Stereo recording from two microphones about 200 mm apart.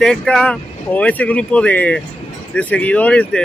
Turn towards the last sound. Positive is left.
turn(degrees=5)  # may be behind; listen again after turning